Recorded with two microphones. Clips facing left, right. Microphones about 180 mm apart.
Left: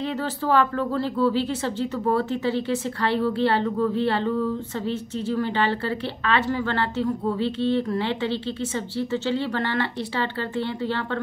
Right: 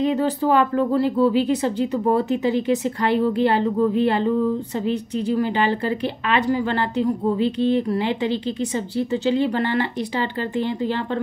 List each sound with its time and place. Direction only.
0.0 s a woman's voice: 15° right (ahead or behind)